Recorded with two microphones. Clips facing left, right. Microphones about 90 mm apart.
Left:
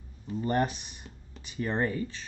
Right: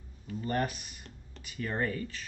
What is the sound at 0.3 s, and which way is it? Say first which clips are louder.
Speech: left 4 dB; 25° left (ahead or behind).